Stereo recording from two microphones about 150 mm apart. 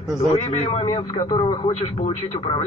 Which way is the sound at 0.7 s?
40° left (ahead or behind).